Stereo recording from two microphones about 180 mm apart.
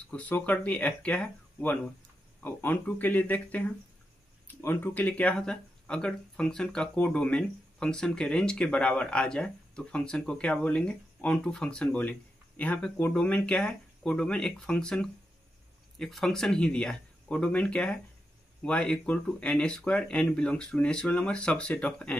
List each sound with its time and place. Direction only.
0.1 s speech: 5° left (ahead or behind)